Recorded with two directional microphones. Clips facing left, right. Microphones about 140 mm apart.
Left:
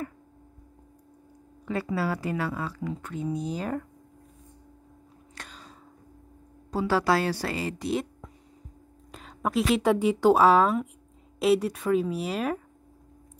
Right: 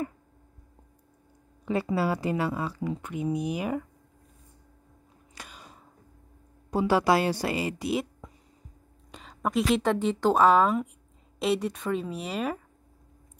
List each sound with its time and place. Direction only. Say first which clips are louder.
1.7 s speech: right 2 dB; 20° right (ahead or behind)
5.4 s a sound: left 1 dB; 10° right (ahead or behind)
6.7 s a woman's voice: right 1 dB; 20° right (ahead or behind); by 12.6 s centre (ahead or behind)